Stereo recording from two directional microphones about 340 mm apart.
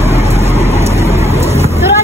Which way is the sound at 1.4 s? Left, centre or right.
Centre.